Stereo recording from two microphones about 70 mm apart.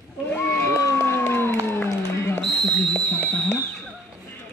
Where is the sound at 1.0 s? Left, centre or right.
Left.